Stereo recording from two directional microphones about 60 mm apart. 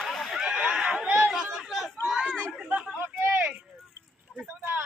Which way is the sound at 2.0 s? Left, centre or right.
Centre.